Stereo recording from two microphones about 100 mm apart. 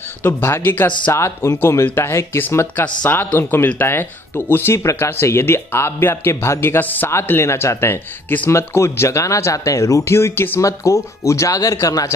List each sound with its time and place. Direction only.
0.2 s speech: 25° left (ahead or behind)